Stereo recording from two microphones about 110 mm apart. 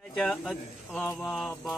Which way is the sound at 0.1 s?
5° left (ahead or behind).